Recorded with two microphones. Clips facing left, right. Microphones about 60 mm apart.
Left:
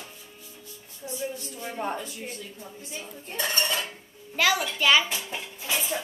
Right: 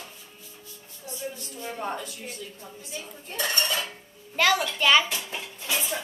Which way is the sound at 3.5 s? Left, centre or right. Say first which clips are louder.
Even; left.